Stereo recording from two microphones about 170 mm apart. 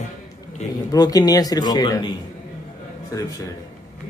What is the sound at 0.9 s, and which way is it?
Speech, 20° left (ahead or behind).